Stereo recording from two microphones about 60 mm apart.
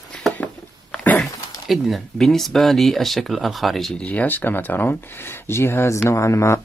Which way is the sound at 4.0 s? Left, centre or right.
Left.